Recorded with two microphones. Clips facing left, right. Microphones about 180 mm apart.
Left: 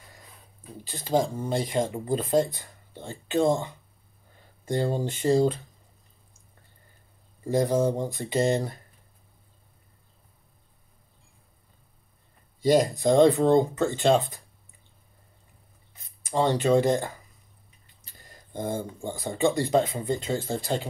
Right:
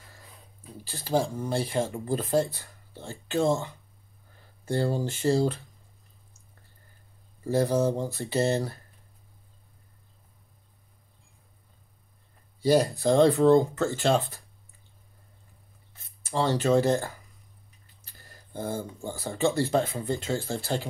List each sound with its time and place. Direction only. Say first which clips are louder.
0.8 s speech: left 2 dB; 20° left (ahead or behind)
7.5 s speech: left 1 dB; 15° left (ahead or behind)
12.6 s speech: left 1 dB; 20° left (ahead or behind)
16.2 s speech: left 2 dB; 15° left (ahead or behind)